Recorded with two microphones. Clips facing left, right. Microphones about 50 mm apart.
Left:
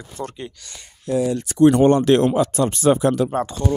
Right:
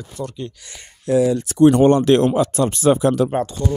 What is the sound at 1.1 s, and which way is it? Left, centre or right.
Speech, right.